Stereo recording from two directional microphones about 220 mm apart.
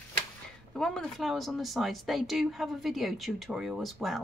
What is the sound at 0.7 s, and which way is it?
Speech, centre (ahead or behind).